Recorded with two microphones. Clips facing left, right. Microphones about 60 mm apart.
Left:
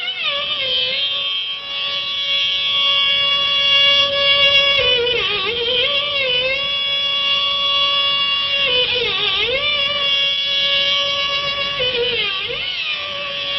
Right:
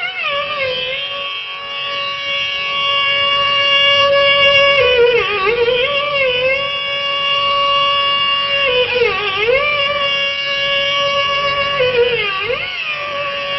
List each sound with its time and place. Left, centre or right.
2.8 s music: right